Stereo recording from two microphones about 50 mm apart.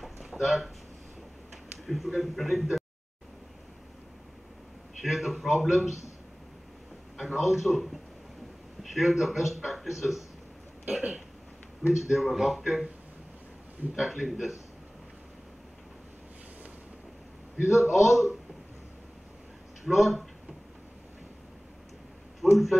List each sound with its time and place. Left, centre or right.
0.0 s a sound: centre
1.9 s a man's voice: centre
5.0 s a man's voice: centre
7.2 s a man's voice: centre
10.9 s speech: right
11.9 s a man's voice: centre
13.9 s a man's voice: centre
17.6 s a man's voice: centre
19.8 s a man's voice: centre
22.4 s speech: centre